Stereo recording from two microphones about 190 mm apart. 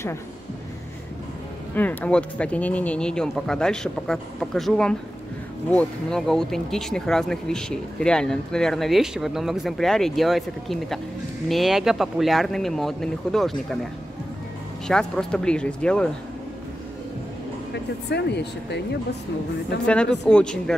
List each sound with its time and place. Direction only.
1.8 s speech: 10° left (ahead or behind)
14.9 s speech: 5° left (ahead or behind)
18.1 s speech: 60° left (ahead or behind)
19.9 s speech: 5° left (ahead or behind)